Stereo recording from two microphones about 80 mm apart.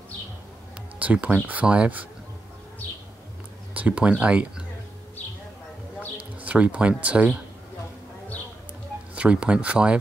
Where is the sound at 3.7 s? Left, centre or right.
Centre.